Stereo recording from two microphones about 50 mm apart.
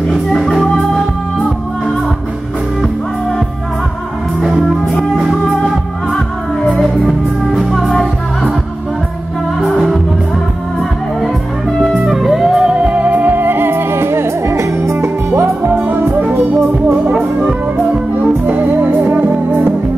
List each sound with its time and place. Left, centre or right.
0.1 s music: centre
4.6 s music: centre
6.8 s music: centre
12.1 s music: centre
12.7 s music: right
15.9 s music: right
18.2 s music: right
19.2 s music: right